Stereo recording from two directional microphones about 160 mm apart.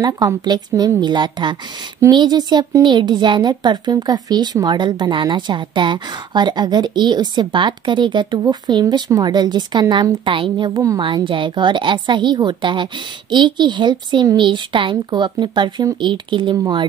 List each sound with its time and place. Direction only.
0.0 s speech: 25° right (ahead or behind)